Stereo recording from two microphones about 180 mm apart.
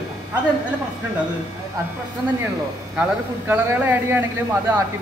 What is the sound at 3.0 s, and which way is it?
A man's voice, 10° right (ahead or behind).